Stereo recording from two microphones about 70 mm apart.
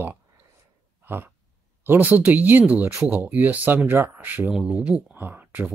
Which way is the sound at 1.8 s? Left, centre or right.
Right.